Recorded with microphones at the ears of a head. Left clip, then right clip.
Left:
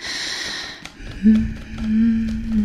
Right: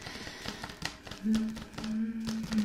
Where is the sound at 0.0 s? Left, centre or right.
Left.